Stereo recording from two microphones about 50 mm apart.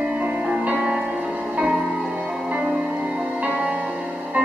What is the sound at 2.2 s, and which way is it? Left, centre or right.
Music, centre.